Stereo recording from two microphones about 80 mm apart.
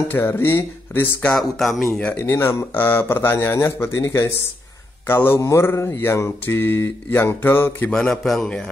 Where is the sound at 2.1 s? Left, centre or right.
Left.